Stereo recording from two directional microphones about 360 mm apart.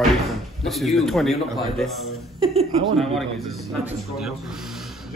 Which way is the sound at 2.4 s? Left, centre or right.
Centre.